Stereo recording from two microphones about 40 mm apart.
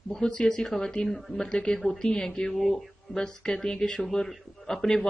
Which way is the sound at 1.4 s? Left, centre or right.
Left.